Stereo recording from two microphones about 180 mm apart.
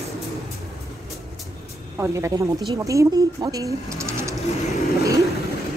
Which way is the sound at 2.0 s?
15° right (ahead or behind).